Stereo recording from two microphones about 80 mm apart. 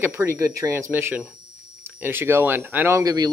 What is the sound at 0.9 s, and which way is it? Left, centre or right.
Speech, right.